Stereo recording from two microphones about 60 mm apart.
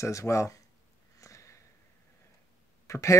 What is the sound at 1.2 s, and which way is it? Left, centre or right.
Sniff, left.